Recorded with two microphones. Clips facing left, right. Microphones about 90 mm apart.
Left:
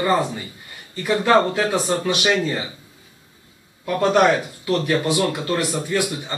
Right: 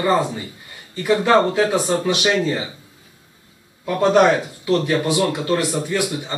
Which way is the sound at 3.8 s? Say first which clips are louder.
Right 2 dB; 20° right (ahead or behind).